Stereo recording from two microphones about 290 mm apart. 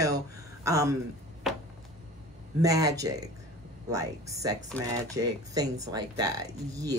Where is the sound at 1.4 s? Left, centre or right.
Centre.